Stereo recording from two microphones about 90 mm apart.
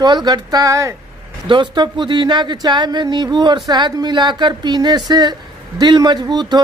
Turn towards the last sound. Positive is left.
turn(degrees=-55)  # may be behind; listen again after turning